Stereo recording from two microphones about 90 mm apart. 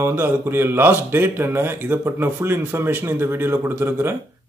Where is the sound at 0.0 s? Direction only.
30° right (ahead or behind).